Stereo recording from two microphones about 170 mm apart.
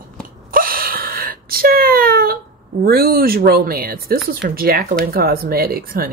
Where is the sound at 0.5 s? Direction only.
60° right (ahead or behind).